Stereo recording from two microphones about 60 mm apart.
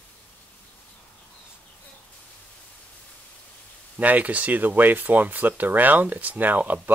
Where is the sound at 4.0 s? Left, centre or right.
Right.